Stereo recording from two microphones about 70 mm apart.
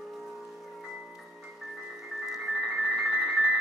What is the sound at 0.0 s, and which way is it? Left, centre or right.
Music, centre.